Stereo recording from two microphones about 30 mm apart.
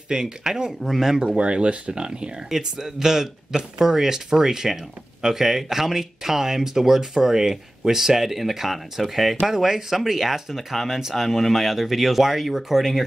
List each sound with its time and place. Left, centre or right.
0.1 s speech: right
0.7 s speech: centre
1.2 s speech: right
2.6 s speech: right; by 13.0 s centre